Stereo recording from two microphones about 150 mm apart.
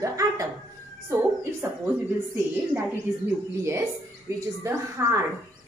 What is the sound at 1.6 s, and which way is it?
Speech, 15° right (ahead or behind).